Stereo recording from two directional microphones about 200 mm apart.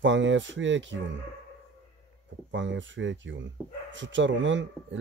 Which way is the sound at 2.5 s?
65° right (ahead or behind).